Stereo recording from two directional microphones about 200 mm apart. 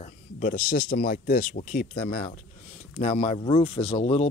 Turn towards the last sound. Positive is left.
turn(degrees=30)  # may be behind; listen again after turning